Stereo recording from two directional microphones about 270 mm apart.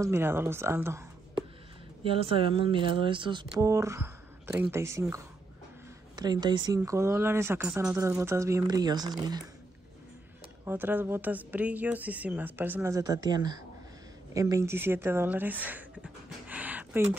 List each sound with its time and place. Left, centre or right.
0.0 s speech: centre
2.0 s speech: centre
10.6 s speech: centre